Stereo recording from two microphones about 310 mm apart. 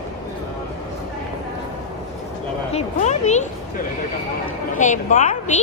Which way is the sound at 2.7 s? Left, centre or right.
Left.